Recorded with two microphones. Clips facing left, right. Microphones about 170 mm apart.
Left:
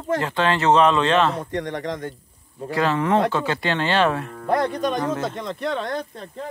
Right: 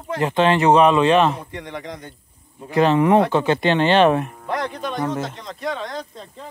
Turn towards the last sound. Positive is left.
turn(degrees=60)  # may be behind; listen again after turning